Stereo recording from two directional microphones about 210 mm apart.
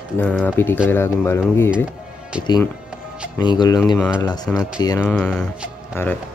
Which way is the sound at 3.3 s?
20° left (ahead or behind).